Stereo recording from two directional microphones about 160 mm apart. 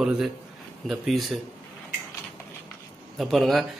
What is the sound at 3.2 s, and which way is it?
Speech, centre (ahead or behind).